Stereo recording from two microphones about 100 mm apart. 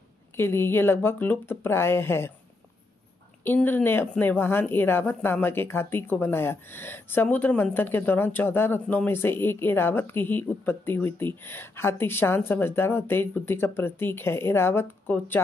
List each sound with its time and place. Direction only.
0.4 s speech: 25° left (ahead or behind)
3.4 s speech: 20° left (ahead or behind)